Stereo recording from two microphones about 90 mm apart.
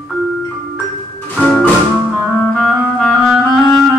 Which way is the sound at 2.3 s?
10° left (ahead or behind).